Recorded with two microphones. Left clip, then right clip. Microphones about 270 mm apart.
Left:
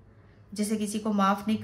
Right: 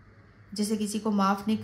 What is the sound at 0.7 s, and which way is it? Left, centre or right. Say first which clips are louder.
Speech: left 1 dB; centre.